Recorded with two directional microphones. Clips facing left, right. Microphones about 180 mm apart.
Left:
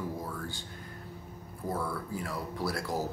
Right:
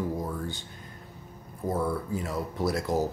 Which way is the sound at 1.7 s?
20° right (ahead or behind).